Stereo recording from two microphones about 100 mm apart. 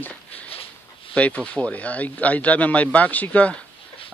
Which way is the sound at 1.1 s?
10° left (ahead or behind).